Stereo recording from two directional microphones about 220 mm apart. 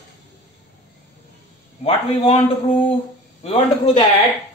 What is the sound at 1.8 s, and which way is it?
Speech, 25° left (ahead or behind).